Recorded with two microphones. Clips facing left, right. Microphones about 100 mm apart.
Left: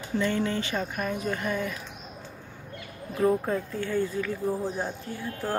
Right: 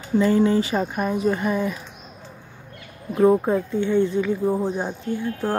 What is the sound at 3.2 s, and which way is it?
Speech, 30° right (ahead or behind).